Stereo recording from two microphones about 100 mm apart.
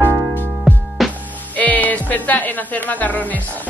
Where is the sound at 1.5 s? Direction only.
15° left (ahead or behind).